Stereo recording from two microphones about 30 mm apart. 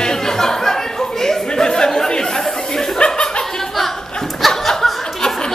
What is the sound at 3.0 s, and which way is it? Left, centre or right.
Chuckle, left.